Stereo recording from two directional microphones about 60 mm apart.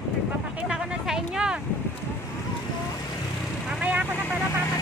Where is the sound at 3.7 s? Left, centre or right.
Centre.